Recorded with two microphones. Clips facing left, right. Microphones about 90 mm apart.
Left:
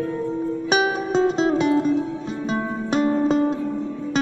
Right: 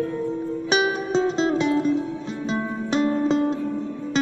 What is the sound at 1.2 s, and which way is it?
Music, 15° left (ahead or behind).